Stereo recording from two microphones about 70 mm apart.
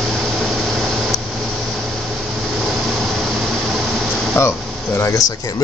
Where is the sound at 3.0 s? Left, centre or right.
Centre.